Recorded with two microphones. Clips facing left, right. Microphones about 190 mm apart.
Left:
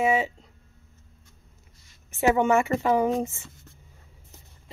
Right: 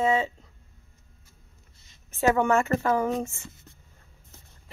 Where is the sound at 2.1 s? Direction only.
15° left (ahead or behind).